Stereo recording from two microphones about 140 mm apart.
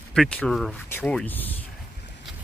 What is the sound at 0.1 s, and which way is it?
Speech, 5° left (ahead or behind).